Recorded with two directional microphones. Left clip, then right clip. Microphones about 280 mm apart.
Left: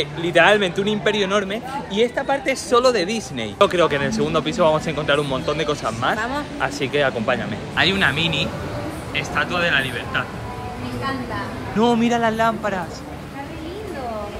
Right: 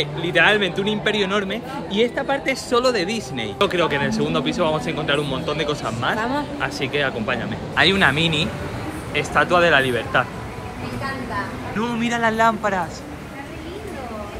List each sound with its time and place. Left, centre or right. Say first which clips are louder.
0.0 s speech: left 2 dB; centre
6.1 s speech: right 1 dB; centre
6.6 s speech: left 5 dB; centre
11.8 s speech: left 4 dB; centre